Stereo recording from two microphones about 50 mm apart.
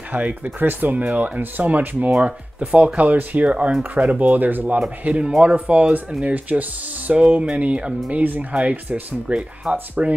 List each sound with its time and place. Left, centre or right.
0.1 s speech: right